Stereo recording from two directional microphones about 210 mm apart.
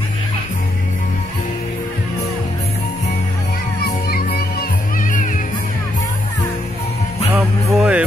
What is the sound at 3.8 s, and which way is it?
Crowd, 40° left (ahead or behind).